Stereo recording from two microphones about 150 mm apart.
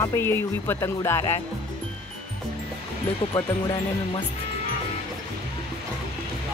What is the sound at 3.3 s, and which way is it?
Speech, 20° left (ahead or behind).